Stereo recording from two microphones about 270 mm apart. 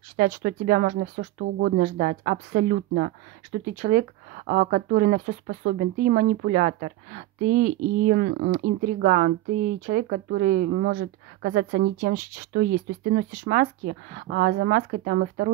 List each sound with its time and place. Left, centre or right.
0.1 s speech: right